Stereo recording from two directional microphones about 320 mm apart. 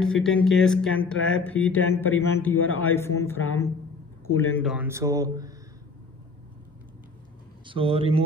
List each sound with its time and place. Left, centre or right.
0.0 s speech: centre
4.4 s speech: centre
7.6 s speech: centre